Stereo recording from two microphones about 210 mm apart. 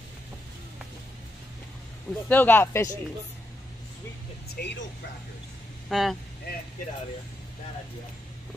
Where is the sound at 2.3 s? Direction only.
10° left (ahead or behind).